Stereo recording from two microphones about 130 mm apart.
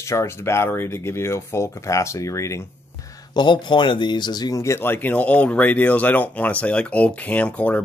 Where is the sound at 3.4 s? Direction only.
35° left (ahead or behind); by 7.8 s 10° left (ahead or behind).